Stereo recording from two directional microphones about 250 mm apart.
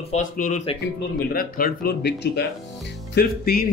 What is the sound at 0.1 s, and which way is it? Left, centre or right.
A man's voice, left.